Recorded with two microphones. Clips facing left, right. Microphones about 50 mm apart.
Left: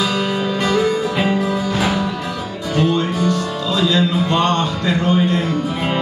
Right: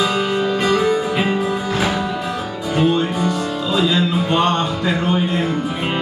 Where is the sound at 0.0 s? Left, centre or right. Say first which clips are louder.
Right 1 dB; centre.